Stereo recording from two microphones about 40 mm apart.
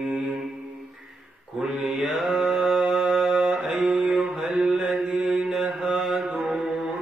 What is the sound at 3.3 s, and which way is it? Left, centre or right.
Mantra, right.